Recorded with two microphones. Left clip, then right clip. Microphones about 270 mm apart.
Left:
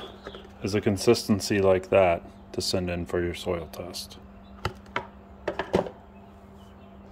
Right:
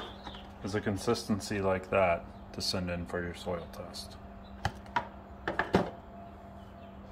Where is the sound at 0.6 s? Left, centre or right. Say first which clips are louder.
Left 8 dB; left.